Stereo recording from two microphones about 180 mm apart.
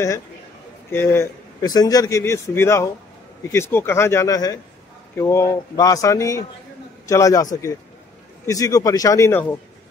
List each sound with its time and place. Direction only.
0.9 s a man's voice: 15° left (ahead or behind)